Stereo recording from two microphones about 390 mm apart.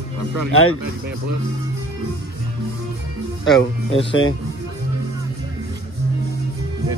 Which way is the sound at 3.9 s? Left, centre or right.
Centre.